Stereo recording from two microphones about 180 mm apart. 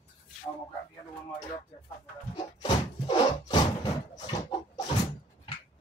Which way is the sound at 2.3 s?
25° left (ahead or behind).